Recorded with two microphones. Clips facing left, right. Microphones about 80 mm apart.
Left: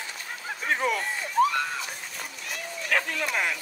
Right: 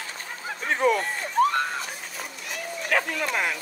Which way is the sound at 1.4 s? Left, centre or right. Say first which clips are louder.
Right 1 dB; right.